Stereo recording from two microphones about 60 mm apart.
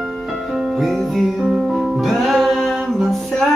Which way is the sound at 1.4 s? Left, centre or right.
Centre.